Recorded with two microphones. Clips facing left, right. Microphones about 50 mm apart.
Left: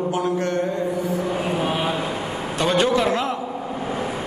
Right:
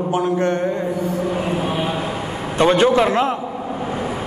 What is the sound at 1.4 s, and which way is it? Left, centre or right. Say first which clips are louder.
Mantra: right 1 dB; right.